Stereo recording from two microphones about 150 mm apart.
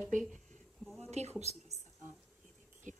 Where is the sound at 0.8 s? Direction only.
5° left (ahead or behind).